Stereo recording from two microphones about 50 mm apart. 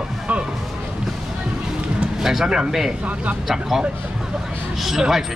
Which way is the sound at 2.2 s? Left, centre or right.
Centre.